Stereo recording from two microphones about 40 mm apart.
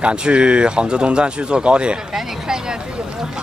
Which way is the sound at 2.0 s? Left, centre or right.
Centre.